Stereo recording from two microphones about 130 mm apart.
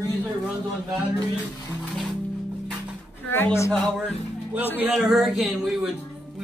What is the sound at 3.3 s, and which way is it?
Speech, 20° left (ahead or behind).